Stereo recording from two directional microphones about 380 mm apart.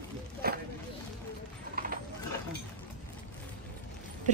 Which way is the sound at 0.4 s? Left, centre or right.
Right.